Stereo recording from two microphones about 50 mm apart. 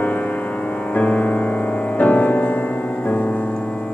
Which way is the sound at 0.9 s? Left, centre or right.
Left.